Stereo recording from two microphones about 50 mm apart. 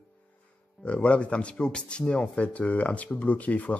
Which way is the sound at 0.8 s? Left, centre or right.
Left.